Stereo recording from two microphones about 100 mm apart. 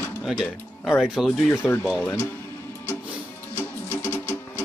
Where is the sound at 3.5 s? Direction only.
20° left (ahead or behind).